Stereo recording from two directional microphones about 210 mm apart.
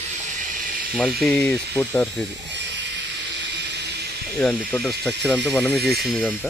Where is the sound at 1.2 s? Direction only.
5° left (ahead or behind).